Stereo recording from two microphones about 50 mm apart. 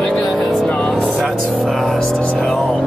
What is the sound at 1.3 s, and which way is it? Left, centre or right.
Music, centre.